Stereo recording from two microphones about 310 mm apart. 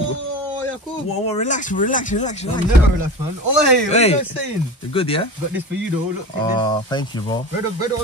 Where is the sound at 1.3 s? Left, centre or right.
Left.